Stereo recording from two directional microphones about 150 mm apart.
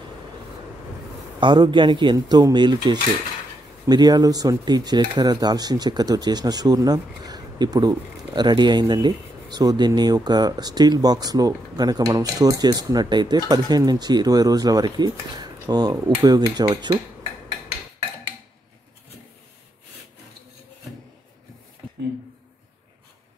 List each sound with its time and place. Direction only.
1.4 s speech: 30° right (ahead or behind)